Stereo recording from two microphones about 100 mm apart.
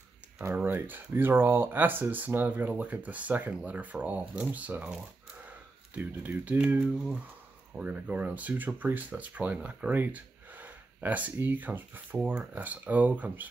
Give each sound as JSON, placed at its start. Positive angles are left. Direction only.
{"t": 0.6, "sound": "speech", "side_deg": -20}
{"t": 7.7, "sound": "speech", "side_deg": -15}